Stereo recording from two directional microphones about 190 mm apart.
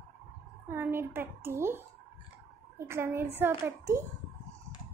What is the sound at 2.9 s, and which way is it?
A child's voice, 15° right (ahead or behind).